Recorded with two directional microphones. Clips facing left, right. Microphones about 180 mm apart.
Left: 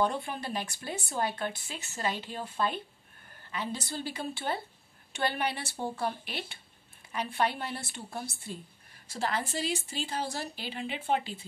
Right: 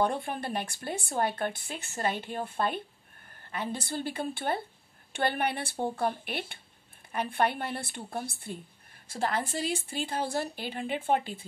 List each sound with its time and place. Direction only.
0.0 s a woman's voice: 55° right (ahead or behind)